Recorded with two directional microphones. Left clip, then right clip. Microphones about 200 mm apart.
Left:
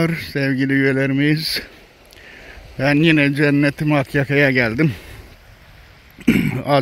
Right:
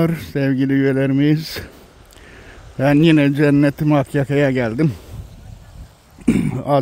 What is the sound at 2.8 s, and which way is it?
Speech, 15° right (ahead or behind).